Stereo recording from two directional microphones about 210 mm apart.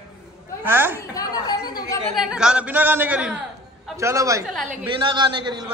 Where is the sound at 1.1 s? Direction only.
20° left (ahead or behind).